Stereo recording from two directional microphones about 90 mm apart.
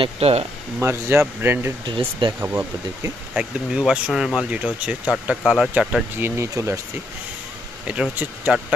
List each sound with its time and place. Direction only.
0.2 s speech: 90° right
0.7 s speech: 30° right (ahead or behind)
1.9 s speech: 65° right (ahead or behind)
2.4 s speech: 30° right (ahead or behind)
3.3 s speech: 10° right (ahead or behind)
4.1 s speech: centre (ahead or behind)
4.5 s speech: 15° right (ahead or behind)
5.3 s speech: centre (ahead or behind)
6.1 s speech: 30° right (ahead or behind)
7.8 s speech: 10° right (ahead or behind)